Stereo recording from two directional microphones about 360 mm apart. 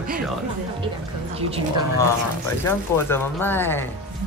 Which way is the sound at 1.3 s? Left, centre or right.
Centre.